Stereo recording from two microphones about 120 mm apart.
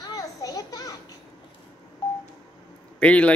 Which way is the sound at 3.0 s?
10° left (ahead or behind).